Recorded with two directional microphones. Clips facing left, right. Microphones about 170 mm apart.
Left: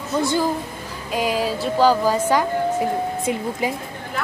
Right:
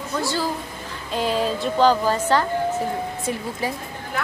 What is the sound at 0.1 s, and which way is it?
A woman's voice, 20° left (ahead or behind).